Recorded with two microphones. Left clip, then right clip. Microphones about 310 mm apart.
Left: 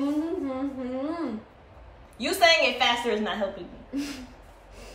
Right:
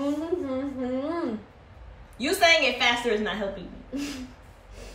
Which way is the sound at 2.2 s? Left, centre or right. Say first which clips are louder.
Even; centre.